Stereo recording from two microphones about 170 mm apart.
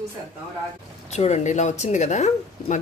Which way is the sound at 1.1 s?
40° left (ahead or behind).